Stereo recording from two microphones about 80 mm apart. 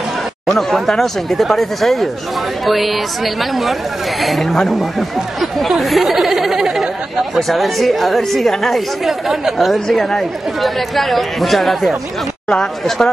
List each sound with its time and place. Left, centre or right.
0.5 s speech: centre
4.2 s speech: centre